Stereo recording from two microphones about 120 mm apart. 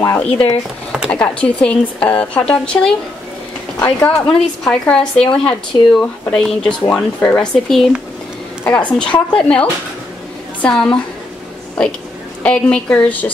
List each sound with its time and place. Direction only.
0.0 s speech: 20° left (ahead or behind)
1.1 s speech: 10° left (ahead or behind)
12.4 s speech: 10° left (ahead or behind)